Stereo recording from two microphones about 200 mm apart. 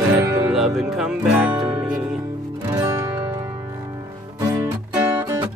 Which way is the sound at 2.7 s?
15° right (ahead or behind).